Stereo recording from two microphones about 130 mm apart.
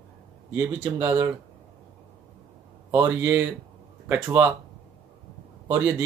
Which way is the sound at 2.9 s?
20° right (ahead or behind).